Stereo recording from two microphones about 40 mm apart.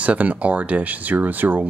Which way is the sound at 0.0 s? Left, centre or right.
Right.